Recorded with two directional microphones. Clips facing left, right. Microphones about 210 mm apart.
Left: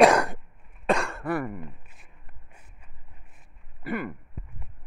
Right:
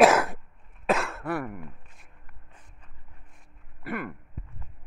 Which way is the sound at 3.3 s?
Centre (ahead or behind).